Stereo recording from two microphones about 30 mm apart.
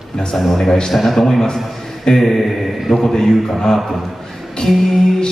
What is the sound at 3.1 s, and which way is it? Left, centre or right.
Speech, centre.